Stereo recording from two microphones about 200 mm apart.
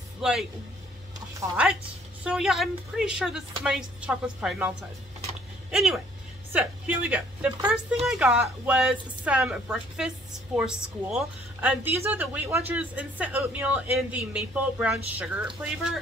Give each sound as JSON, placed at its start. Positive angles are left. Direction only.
{"t": 0.2, "sound": "speech", "side_deg": -5}
{"t": 1.6, "sound": "a woman's voice", "side_deg": -5}